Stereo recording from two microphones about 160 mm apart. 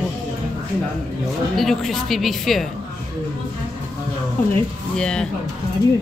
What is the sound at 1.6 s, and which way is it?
Speech, centre (ahead or behind).